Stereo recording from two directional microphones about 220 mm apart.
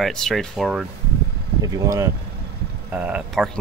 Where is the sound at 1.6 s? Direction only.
15° right (ahead or behind).